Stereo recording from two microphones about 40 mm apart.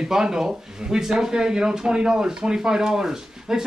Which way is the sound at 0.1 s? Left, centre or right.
Centre.